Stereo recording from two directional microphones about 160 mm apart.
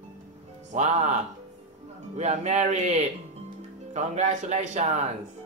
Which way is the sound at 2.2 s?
45° right (ahead or behind).